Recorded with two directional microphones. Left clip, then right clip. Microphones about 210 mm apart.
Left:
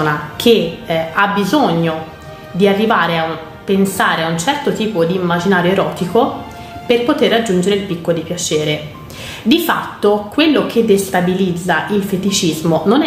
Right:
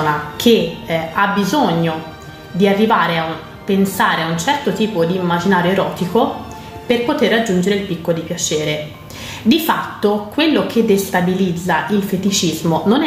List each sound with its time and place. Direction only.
0.0 s a woman's voice: 15° left (ahead or behind)